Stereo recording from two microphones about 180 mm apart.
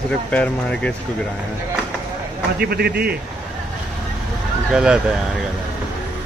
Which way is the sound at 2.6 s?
60° right (ahead or behind).